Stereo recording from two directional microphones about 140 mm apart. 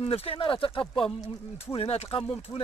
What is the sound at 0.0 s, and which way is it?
Speech, 45° left (ahead or behind).